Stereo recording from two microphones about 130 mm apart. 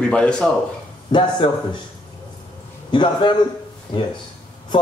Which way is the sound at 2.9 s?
40° left (ahead or behind).